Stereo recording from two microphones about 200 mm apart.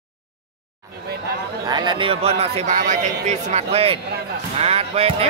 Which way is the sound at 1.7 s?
20° right (ahead or behind).